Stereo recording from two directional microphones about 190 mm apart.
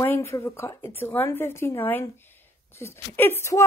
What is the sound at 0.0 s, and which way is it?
A woman's voice, 15° left (ahead or behind).